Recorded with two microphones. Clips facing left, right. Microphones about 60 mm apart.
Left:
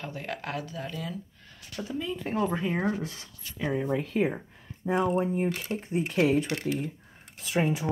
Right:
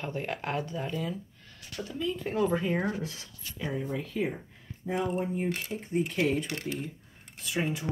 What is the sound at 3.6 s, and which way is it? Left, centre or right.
Speech, left.